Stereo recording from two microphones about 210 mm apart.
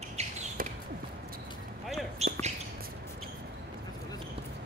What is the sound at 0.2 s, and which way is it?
Bird, 30° right (ahead or behind).